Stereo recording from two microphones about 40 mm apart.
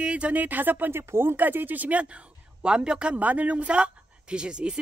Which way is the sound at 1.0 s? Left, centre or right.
Right.